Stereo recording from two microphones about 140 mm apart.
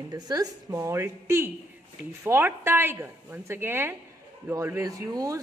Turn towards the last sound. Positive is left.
turn(degrees=-25)  # may be behind; listen again after turning